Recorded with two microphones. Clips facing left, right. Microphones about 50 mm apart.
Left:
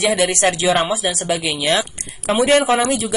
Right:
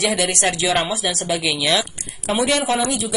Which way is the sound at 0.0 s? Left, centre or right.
Left.